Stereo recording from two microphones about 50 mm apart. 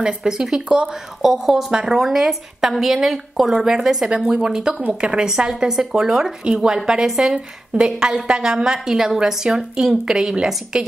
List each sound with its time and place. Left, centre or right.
0.0 s a woman's voice: centre
5.3 s a woman's voice: centre